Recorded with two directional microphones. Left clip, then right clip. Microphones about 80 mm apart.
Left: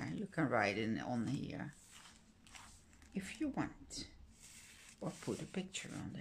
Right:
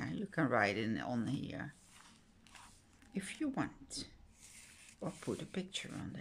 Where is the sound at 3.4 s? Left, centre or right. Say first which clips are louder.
Right 2 dB; right.